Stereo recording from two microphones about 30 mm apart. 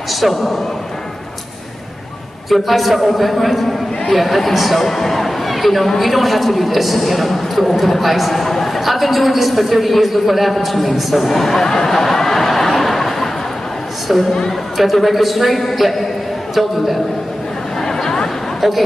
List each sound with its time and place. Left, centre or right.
0.1 s a man's voice: centre
2.5 s speech: centre
11.2 s a sound: centre
14.1 s speech: centre
17.7 s chatter: centre